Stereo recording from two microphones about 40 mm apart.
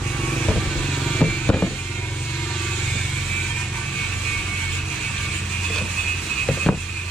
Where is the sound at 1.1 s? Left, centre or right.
Left.